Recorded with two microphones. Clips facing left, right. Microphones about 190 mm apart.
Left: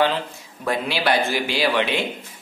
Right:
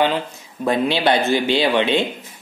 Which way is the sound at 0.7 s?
25° right (ahead or behind).